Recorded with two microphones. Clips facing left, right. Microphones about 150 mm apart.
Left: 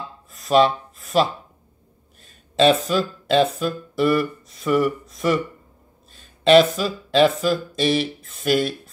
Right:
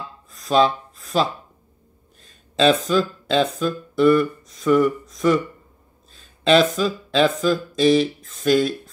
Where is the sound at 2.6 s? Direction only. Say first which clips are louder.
Even; 5° left (ahead or behind).